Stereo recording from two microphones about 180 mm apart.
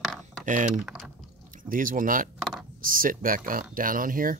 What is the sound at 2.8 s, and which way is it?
Speech, 50° right (ahead or behind).